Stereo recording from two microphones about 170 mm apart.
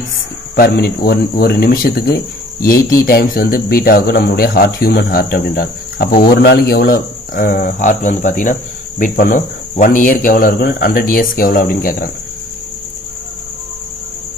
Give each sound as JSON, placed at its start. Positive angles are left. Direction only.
{"t": 0.6, "sound": "speech", "side_deg": 65}